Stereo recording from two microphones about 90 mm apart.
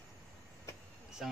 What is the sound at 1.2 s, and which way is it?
Speech, 5° right (ahead or behind).